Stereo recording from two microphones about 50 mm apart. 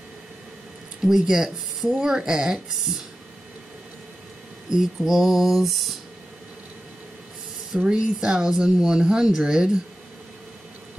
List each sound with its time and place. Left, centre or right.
1.0 s speech: centre
4.6 s a sound: centre
7.7 s speech: centre